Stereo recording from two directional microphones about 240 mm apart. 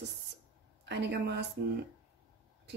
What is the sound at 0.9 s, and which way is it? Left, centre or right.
Speech, right.